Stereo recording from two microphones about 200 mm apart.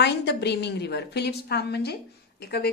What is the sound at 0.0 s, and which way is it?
Speech, 55° left (ahead or behind).